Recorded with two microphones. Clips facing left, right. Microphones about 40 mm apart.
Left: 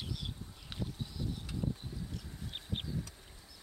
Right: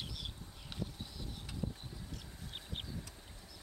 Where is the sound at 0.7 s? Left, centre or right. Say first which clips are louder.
Left 1 dB; left.